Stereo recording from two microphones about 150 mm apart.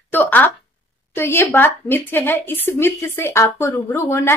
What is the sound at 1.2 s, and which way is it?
A woman's voice, 15° left (ahead or behind).